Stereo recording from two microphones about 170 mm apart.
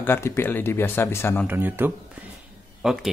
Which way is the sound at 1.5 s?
10° right (ahead or behind).